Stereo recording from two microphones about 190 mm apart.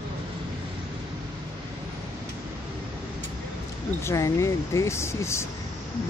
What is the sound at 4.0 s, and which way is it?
Speech, 15° left (ahead or behind).